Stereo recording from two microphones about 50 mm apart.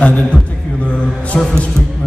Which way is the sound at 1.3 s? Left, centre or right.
Centre.